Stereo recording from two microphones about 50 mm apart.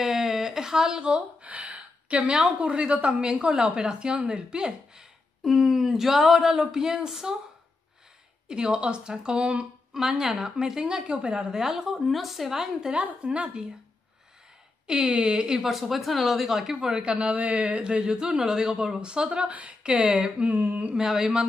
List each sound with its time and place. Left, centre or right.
0.0 s a sound: centre; by 2.4 s right
2.6 s a woman's voice: centre
8.5 s a woman's voice: centre
9.9 s a woman's voice: centre
12.9 s a sound: right
14.9 s a woman's voice: right
15.6 s a woman's voice: centre
19.5 s a sound: right
20.5 s speech: right
20.9 s a woman's voice: centre